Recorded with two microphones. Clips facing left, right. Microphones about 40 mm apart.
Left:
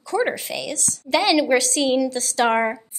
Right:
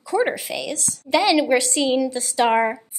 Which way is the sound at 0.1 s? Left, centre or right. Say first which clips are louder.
Right 1 dB; centre.